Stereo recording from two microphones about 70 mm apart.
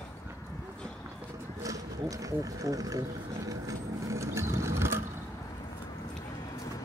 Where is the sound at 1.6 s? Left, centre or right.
Right.